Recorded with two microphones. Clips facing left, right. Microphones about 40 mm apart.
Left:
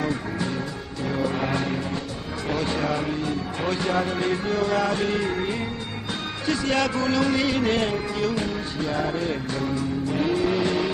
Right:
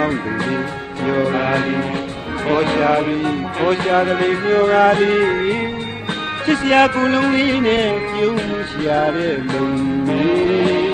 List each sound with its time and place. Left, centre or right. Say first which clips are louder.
0.0 s music: right 7 dB; right
2.4 s speech: right 10 dB; right
6.4 s music: right 10 dB; right